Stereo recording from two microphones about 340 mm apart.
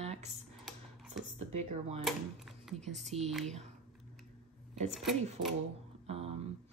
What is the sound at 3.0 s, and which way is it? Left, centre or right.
Speech, centre.